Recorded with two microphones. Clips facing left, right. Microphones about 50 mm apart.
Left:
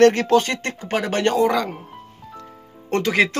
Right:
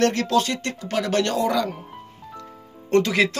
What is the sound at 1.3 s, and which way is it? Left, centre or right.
Speech, left.